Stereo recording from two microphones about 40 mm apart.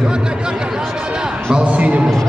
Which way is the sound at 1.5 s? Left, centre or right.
Right.